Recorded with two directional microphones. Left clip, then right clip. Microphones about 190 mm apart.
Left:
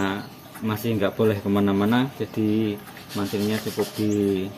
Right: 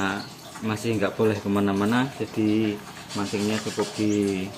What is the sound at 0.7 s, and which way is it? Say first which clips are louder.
Speech: left 1 dB; 20° left (ahead or behind).